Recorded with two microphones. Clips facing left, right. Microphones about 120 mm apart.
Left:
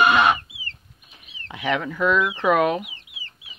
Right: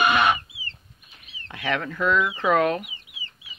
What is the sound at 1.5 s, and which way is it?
Speech, 15° left (ahead or behind).